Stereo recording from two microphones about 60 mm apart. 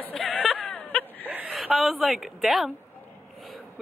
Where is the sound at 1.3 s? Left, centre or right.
Right.